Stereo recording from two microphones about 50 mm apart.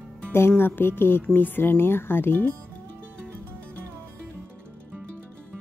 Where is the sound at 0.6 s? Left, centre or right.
Left.